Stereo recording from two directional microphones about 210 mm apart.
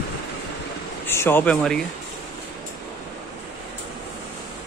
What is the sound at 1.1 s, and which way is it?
Speech, 10° left (ahead or behind).